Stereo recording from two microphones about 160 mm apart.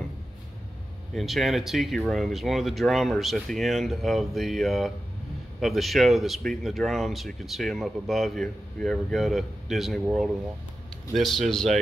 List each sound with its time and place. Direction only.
1.1 s speech: centre (ahead or behind)
11.1 s speech: centre (ahead or behind)